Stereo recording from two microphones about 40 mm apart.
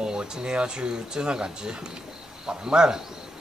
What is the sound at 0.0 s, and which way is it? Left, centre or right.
Speech, centre.